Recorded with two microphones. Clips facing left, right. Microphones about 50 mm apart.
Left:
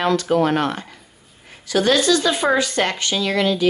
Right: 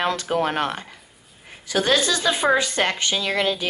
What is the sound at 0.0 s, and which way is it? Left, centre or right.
Speech, right.